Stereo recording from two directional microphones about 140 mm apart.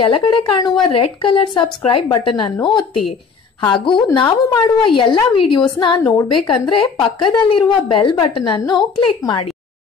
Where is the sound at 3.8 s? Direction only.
35° left (ahead or behind).